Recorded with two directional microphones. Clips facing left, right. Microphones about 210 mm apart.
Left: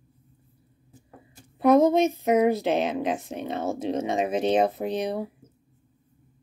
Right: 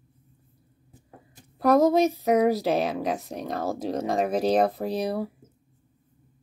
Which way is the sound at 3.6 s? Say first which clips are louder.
Left 1 dB; 35° right (ahead or behind).